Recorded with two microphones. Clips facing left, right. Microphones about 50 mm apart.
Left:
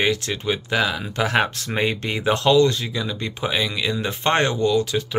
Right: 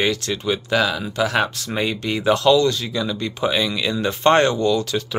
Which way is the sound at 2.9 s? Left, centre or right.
Centre.